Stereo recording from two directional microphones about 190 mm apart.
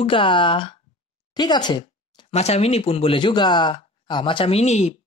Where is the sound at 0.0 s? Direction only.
25° left (ahead or behind).